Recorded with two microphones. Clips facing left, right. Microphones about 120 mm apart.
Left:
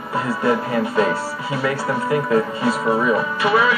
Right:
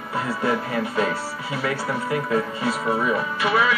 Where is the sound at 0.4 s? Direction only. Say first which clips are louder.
Left 5 dB; 30° left (ahead or behind).